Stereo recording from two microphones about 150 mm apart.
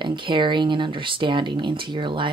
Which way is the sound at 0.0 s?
30° right (ahead or behind).